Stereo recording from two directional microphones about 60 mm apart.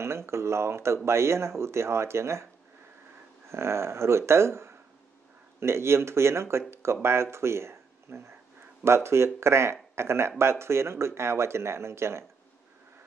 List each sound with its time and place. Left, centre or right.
0.0 s speech: right
3.4 s speech: right